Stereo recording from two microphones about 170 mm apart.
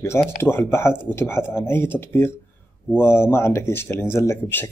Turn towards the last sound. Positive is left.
turn(degrees=15)  # may be behind; listen again after turning